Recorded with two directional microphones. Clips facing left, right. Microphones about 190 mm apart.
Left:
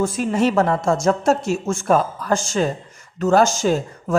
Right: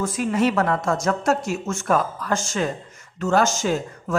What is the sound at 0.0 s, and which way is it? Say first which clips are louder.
A woman's voice: left 2 dB; 30° left (ahead or behind).